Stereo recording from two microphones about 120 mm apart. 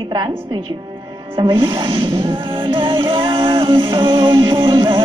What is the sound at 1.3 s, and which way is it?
Music, 45° right (ahead or behind).